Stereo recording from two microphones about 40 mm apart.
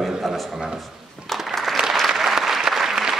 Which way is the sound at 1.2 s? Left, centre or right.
Centre.